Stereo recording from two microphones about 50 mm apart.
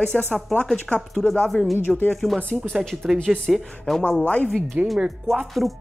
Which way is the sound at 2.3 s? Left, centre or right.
Left.